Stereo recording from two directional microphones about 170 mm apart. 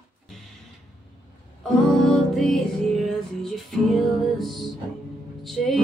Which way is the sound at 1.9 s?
Centre (ahead or behind).